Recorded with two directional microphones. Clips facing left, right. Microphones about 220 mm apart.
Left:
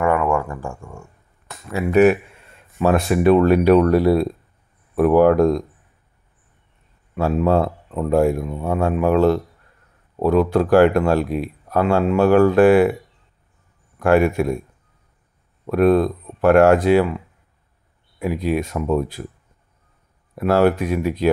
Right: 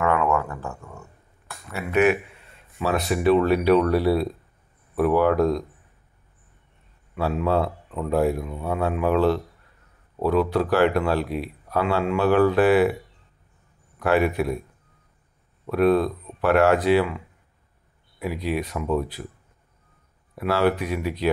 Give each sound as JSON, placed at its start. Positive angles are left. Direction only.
{"t": 0.0, "sound": "a sound", "side_deg": 10}
{"t": 1.8, "sound": "speech", "side_deg": 35}
{"t": 2.8, "sound": "speech", "side_deg": 50}
{"t": 7.2, "sound": "speech", "side_deg": 45}
{"t": 13.9, "sound": "speech", "side_deg": 45}
{"t": 15.6, "sound": "speech", "side_deg": 45}
{"t": 18.2, "sound": "speech", "side_deg": 45}
{"t": 20.3, "sound": "speech", "side_deg": 45}